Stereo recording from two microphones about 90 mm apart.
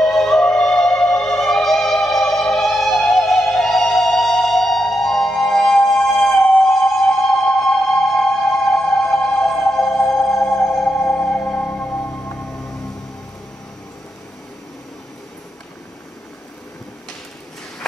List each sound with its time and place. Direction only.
0.0 s music: 5° left (ahead or behind)